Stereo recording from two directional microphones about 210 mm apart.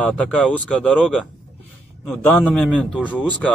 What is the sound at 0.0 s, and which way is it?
A man's voice, 5° left (ahead or behind).